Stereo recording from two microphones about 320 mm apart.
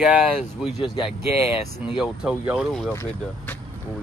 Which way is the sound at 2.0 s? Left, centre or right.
Centre.